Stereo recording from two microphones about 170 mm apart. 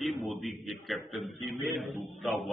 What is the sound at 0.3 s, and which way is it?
A man's voice, centre (ahead or behind).